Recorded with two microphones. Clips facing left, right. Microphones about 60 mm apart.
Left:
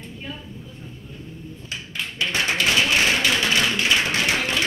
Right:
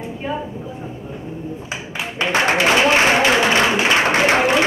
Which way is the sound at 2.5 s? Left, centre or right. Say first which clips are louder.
Right 6 dB; right.